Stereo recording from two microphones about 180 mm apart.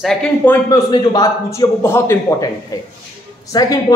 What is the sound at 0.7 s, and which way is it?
A man's voice, 20° left (ahead or behind).